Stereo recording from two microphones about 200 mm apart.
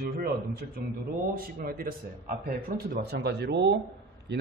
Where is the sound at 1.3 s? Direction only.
45° right (ahead or behind).